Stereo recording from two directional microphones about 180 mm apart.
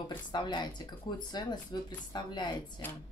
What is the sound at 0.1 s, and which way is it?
Speech, 25° left (ahead or behind).